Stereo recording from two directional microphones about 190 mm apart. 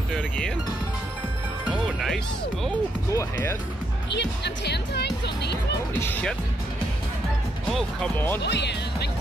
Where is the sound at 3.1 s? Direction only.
15° left (ahead or behind).